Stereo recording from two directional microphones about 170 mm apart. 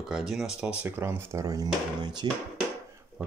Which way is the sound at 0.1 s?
Centre (ahead or behind).